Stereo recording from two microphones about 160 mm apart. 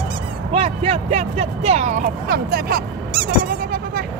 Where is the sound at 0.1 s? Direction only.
35° right (ahead or behind).